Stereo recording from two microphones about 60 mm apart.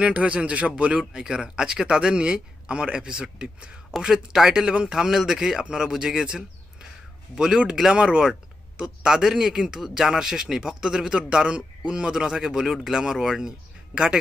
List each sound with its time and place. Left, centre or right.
0.0 s speech: right